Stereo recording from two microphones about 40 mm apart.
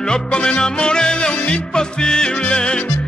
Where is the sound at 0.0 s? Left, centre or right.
Left.